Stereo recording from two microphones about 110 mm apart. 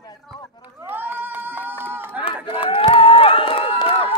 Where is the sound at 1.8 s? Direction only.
20° right (ahead or behind).